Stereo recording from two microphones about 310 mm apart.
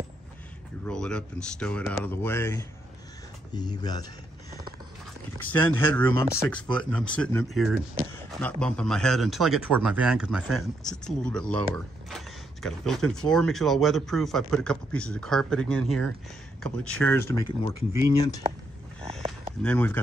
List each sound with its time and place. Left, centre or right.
0.8 s a man's voice: centre
5.4 s a man's voice: centre
18.1 s speech: centre
19.6 s a man's voice: centre